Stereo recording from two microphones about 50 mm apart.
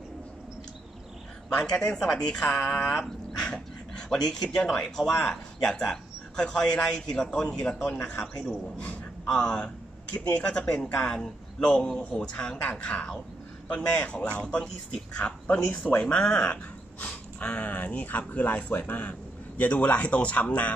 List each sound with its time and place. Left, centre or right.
1.6 s speech: left
2.0 s speech: centre
2.9 s dog: centre
4.1 s speech: centre
8.0 s speech: left
8.7 s a man's voice: left